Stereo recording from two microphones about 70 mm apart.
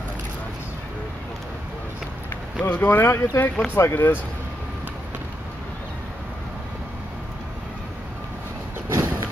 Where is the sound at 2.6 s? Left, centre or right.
Left.